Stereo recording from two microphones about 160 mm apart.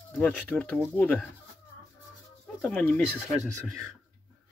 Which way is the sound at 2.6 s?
10° left (ahead or behind).